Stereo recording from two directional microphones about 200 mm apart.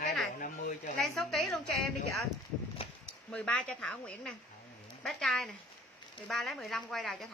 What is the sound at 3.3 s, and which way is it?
Speech, 5° left (ahead or behind).